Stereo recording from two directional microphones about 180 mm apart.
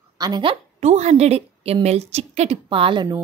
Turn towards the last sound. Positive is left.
turn(degrees=-30)  # may be behind; listen again after turning